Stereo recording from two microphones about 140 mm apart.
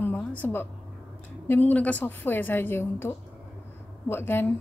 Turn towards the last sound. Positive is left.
turn(degrees=15)  # may be behind; listen again after turning